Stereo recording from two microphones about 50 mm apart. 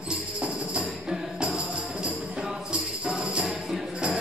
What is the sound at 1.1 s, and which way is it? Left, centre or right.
Music, right.